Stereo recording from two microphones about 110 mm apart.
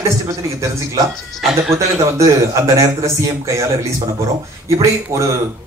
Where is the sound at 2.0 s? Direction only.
30° right (ahead or behind).